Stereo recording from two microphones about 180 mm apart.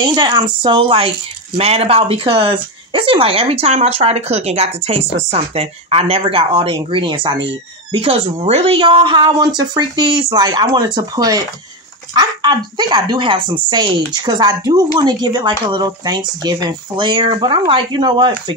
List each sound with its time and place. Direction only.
0.0 s a woman's voice: 25° right (ahead or behind)